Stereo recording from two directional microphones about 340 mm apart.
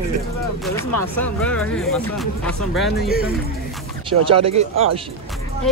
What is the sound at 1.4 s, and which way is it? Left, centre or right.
Speech, centre.